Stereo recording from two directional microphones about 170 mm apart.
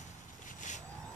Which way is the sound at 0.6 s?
45° left (ahead or behind).